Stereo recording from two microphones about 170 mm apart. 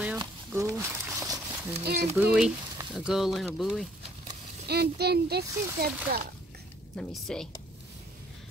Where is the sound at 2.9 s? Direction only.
5° right (ahead or behind).